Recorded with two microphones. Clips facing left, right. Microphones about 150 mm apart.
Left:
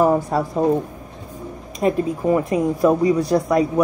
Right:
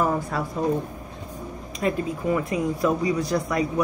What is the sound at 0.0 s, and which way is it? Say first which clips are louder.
Speech: left 7 dB; 35° left (ahead or behind).